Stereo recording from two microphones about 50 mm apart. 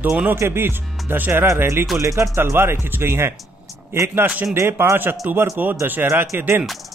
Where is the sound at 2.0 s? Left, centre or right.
Right.